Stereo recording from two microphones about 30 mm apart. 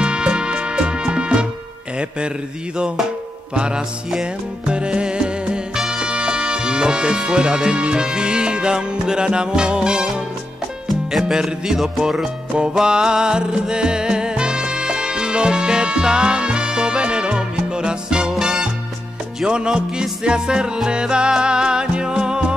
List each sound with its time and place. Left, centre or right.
0.0 s music: right
3.5 s music: right
5.8 s speech: right
11.1 s music: centre
12.8 s music: right